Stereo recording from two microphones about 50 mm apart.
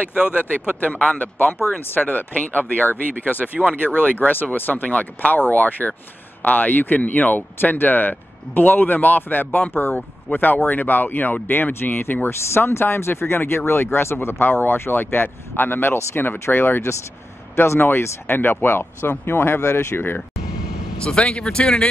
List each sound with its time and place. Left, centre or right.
0.1 s speech: right
2.0 s speech: left
3.5 s speech: right
3.9 s speech: left
21.0 s speech: centre